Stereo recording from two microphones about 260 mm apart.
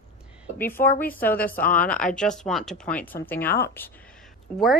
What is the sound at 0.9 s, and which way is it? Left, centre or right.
A woman's voice, centre.